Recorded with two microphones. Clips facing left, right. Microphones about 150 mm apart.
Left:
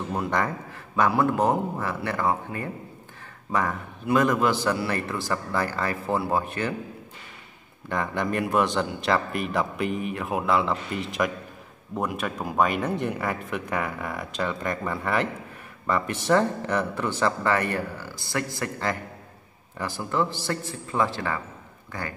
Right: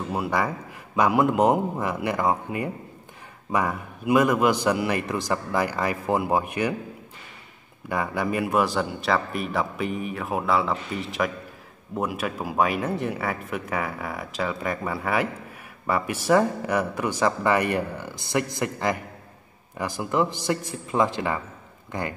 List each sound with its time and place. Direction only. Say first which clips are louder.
0.1 s a man's voice: right 1 dB; 5° right (ahead or behind)
7.9 s a man's voice: right 1 dB; 5° right (ahead or behind)